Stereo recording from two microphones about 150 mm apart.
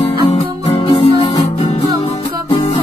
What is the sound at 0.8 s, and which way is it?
Music, 40° left (ahead or behind).